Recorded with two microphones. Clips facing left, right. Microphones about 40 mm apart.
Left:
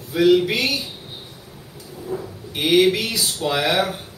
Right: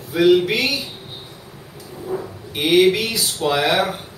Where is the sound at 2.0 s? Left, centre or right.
Right.